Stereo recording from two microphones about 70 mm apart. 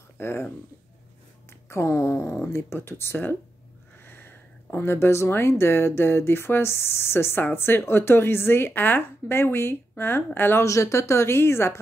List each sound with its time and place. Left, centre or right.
0.2 s speech: left
1.7 s speech: left
10.6 s speech: left